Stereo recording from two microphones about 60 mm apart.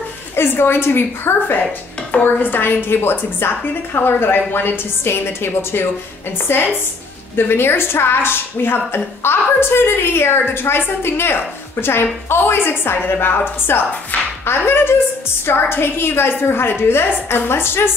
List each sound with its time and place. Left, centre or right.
0.4 s a woman's voice: left